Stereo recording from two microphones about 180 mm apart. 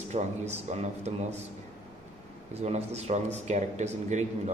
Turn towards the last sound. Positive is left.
turn(degrees=-40)  # may be behind; listen again after turning